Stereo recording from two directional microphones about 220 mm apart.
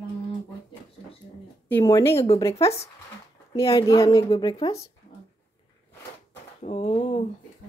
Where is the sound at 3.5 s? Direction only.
15° left (ahead or behind).